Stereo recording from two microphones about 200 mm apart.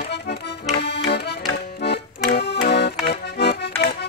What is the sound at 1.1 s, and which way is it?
Accordion, 55° left (ahead or behind).